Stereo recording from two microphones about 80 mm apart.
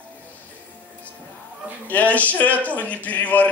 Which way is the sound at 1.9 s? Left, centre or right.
Centre.